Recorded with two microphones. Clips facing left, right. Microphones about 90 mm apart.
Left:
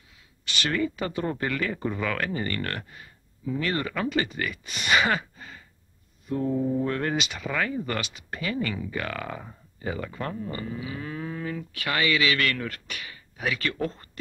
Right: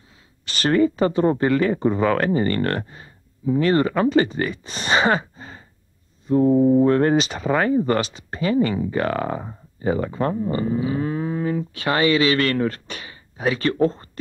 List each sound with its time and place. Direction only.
0.5 s speech: 40° right (ahead or behind)